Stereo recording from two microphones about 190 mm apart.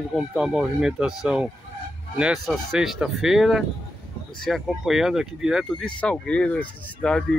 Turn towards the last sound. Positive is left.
turn(degrees=5)  # may be behind; listen again after turning